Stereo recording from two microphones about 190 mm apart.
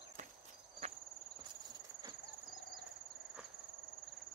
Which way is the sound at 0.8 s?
35° right (ahead or behind).